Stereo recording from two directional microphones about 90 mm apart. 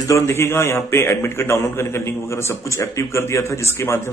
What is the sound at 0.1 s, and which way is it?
A man's voice, 30° left (ahead or behind).